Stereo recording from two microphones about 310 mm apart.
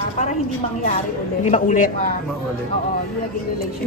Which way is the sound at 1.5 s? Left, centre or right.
Left.